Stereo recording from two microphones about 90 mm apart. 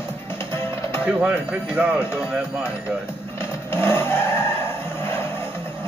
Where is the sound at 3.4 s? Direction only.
25° left (ahead or behind).